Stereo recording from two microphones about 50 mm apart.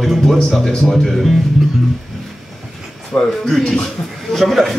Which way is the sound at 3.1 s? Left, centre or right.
Left.